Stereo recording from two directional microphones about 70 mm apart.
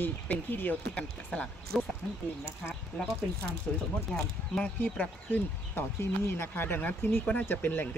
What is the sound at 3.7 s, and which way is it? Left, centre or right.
Speech, centre.